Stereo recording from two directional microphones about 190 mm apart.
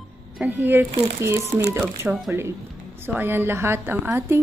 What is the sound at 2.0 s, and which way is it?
Speech, centre (ahead or behind).